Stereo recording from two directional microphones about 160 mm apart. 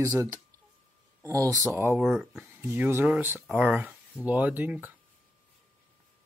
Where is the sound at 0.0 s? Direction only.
15° right (ahead or behind).